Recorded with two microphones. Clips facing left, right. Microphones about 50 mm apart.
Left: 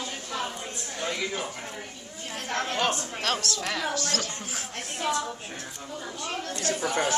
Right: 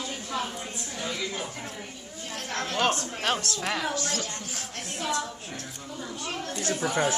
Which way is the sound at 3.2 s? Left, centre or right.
Centre.